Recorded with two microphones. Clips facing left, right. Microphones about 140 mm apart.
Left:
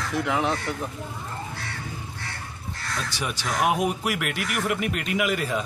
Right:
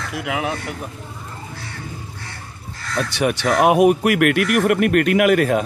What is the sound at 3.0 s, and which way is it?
Speech, 65° right (ahead or behind).